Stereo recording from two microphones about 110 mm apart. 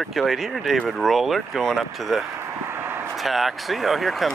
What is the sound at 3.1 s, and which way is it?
Speech, centre (ahead or behind).